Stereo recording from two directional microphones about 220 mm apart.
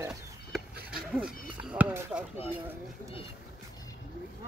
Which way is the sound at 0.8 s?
45° right (ahead or behind).